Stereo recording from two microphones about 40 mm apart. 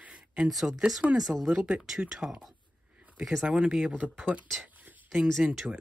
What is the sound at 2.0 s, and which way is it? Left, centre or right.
Speech, centre.